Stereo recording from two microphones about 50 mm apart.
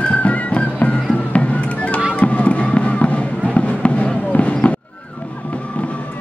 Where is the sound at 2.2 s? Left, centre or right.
Left.